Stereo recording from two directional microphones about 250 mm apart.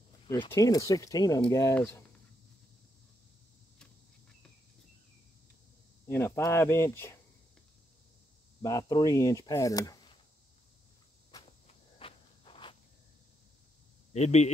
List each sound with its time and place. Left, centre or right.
0.3 s speech: centre
6.0 s speech: centre
8.6 s speech: centre
11.6 s walk: left
14.1 s a man's voice: left